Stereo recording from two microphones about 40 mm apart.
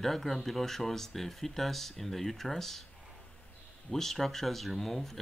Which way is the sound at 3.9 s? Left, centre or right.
Centre.